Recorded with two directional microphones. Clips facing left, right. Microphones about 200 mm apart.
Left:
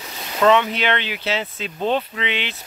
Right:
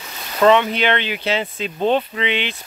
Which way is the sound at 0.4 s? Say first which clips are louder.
Right 2 dB; centre (ahead or behind).